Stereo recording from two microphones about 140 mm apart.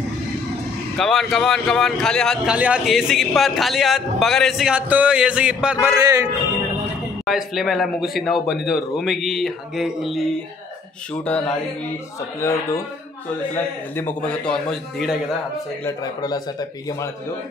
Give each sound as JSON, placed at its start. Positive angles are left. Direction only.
{"t": 0.9, "sound": "a man's voice", "side_deg": 0}
{"t": 2.4, "sound": "a man's voice", "side_deg": -10}
{"t": 5.9, "sound": "speech", "side_deg": -25}
{"t": 7.2, "sound": "a man's voice", "side_deg": 0}
{"t": 11.2, "sound": "a man's voice", "side_deg": 10}
{"t": 12.4, "sound": "speech", "side_deg": 20}
{"t": 13.9, "sound": "a man's voice", "side_deg": 10}
{"t": 15.8, "sound": "speech", "side_deg": 25}